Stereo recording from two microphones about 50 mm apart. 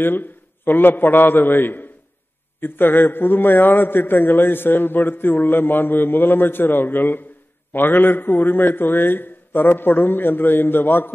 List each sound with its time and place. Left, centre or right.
0.0 s a man's voice: left